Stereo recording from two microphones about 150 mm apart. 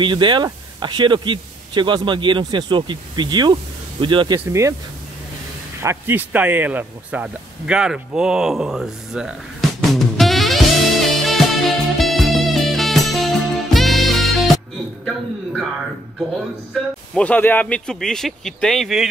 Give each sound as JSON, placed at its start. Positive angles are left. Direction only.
{"t": 0.0, "sound": "speech", "side_deg": -30}
{"t": 4.5, "sound": "speech", "side_deg": -20}
{"t": 5.8, "sound": "a sound", "side_deg": -15}
{"t": 13.7, "sound": "music", "side_deg": 0}
{"t": 15.0, "sound": "a sound", "side_deg": 0}
{"t": 17.1, "sound": "speech", "side_deg": 10}